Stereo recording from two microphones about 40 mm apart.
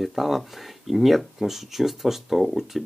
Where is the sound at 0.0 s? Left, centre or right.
Centre.